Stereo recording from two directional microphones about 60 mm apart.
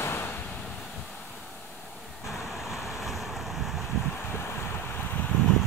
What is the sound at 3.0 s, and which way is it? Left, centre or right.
Boat, centre.